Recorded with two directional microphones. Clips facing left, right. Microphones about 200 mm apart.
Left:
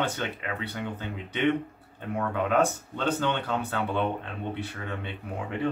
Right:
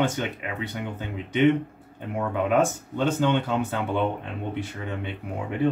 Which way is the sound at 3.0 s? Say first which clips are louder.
Right 5 dB; 15° right (ahead or behind).